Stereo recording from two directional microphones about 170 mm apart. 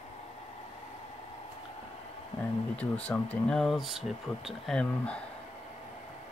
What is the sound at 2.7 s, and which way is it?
Speech, 10° left (ahead or behind).